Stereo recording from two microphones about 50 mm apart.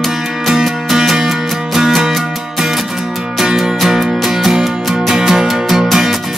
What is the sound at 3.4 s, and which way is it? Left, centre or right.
Music, centre.